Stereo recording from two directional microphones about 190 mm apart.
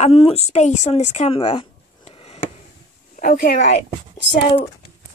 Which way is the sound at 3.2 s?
50° left (ahead or behind).